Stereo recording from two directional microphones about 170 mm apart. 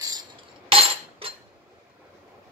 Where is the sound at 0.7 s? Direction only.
35° right (ahead or behind).